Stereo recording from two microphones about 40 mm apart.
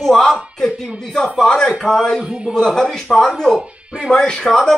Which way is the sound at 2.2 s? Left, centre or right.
Centre.